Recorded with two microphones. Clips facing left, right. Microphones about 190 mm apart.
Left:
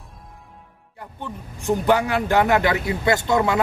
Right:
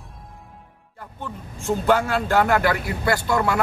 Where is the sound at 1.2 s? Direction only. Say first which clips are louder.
Left 2 dB; 15° left (ahead or behind).